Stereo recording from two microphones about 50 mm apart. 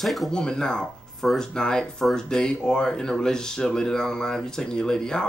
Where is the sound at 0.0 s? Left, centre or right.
Centre.